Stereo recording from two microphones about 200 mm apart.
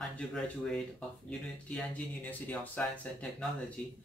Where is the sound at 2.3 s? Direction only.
10° left (ahead or behind).